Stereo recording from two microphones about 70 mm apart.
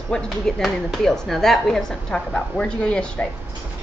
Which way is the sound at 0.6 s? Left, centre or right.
Centre.